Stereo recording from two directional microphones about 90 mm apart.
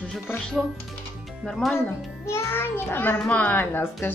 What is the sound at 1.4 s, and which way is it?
Speech, 5° left (ahead or behind).